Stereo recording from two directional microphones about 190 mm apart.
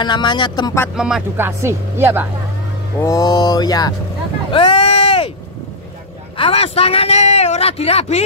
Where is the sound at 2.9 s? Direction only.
15° left (ahead or behind).